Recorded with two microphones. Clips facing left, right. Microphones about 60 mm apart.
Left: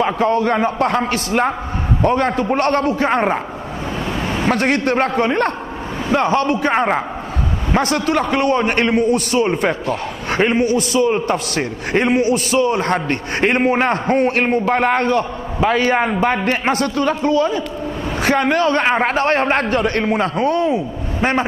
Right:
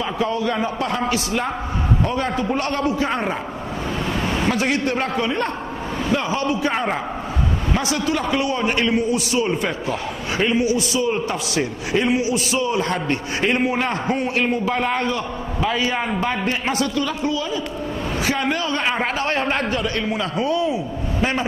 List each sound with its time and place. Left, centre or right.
0.0 s a man's voice: left
4.5 s a man's voice: left
6.7 s a man's voice: left
7.7 s a man's voice: left